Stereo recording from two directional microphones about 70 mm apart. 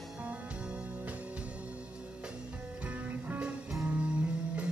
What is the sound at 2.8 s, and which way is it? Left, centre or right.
Music, centre.